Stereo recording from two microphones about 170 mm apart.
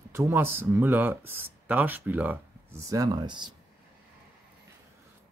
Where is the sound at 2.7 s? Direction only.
20° right (ahead or behind).